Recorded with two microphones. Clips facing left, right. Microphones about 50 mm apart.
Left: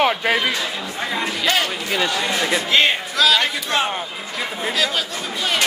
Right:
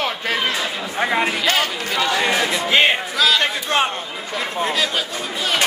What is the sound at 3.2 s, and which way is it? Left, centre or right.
Speech, centre.